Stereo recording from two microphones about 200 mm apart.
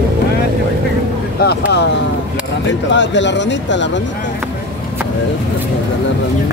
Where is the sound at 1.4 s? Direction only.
55° left (ahead or behind).